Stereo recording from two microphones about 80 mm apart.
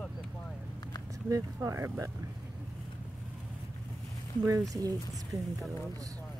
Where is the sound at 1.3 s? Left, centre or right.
Right.